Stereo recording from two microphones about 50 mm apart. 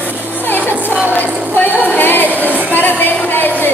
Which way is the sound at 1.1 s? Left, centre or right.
Left.